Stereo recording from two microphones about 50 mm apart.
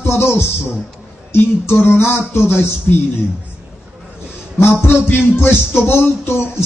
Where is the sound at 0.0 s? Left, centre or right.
Left.